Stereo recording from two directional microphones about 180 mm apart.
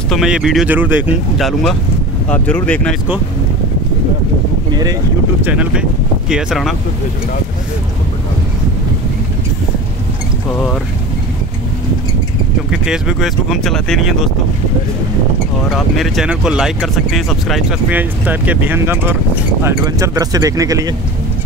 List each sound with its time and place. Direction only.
0.1 s speech: 5° right (ahead or behind)
2.2 s speech: 5° left (ahead or behind)
5.4 s speech: 5° right (ahead or behind)
12.7 s speech: 5° right (ahead or behind)
15.7 s speech: centre (ahead or behind); by 20.9 s 20° right (ahead or behind)